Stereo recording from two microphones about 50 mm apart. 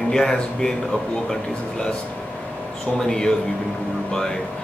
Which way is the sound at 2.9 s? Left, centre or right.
Centre.